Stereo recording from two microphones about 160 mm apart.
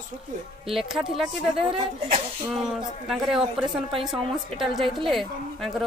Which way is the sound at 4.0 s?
Centre (ahead or behind).